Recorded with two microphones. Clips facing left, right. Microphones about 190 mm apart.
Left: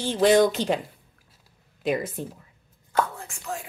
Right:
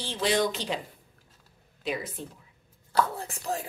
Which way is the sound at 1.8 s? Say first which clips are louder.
Left 7 dB; 50° left (ahead or behind).